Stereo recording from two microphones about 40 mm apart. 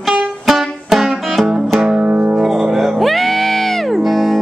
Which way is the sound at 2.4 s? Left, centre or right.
Centre.